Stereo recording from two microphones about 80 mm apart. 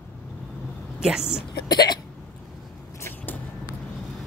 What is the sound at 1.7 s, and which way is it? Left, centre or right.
Hiccup, left.